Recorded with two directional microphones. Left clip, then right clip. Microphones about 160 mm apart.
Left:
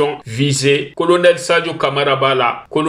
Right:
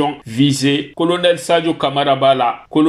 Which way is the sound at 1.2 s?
35° right (ahead or behind).